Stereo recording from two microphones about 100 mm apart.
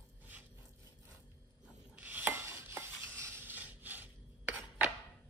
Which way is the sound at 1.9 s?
15° right (ahead or behind).